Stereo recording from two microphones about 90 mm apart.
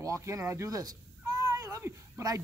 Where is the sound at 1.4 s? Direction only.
35° right (ahead or behind).